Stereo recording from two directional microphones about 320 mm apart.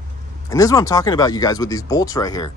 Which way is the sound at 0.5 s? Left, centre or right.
Centre.